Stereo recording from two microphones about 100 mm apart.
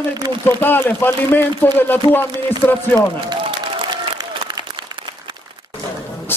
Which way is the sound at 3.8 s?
45° right (ahead or behind).